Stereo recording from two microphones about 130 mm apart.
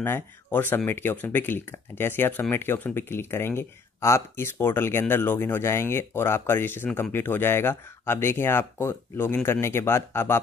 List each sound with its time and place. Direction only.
0.0 s speech: 15° left (ahead or behind)